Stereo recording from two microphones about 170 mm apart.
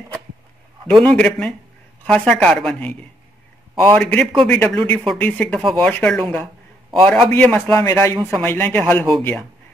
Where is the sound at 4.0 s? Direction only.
5° left (ahead or behind).